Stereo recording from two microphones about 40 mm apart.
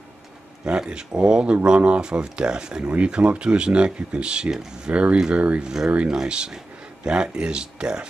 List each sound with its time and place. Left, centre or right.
0.7 s speech: right
5.3 s speech: right
5.6 s speech: centre